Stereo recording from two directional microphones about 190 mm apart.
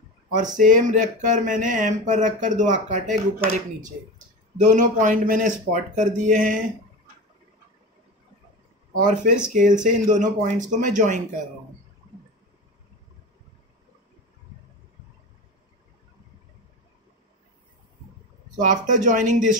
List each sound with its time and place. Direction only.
0.6 s speech: 40° right (ahead or behind)
4.6 s speech: 40° right (ahead or behind)
8.9 s speech: 45° right (ahead or behind)
18.6 s speech: 40° right (ahead or behind)